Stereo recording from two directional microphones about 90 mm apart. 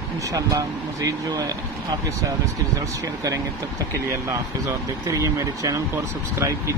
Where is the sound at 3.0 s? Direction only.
40° right (ahead or behind).